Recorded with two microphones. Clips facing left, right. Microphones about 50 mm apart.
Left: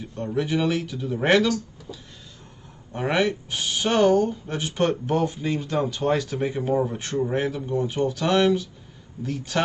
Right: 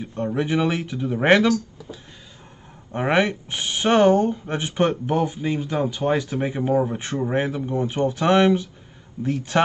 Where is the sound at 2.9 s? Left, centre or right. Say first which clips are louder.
Right 3 dB; right.